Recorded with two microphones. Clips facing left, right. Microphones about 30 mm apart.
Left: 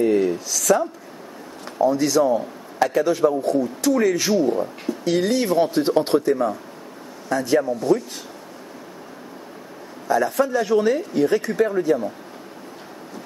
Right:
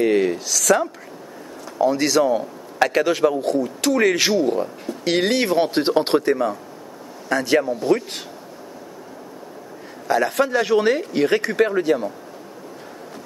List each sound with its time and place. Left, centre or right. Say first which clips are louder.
0.0 s a sound: right 1 dB; right
0.5 s a man's voice: right 1 dB; right
7.2 s speech: right 1 dB; right
7.9 s speech: even; right
10.0 s speech: right 1 dB; right